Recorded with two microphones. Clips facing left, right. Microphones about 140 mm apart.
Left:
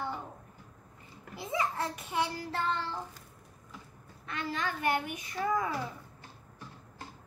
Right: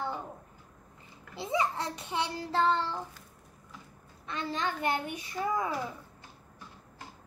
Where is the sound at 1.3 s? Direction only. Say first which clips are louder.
Right 3 dB; 25° right (ahead or behind).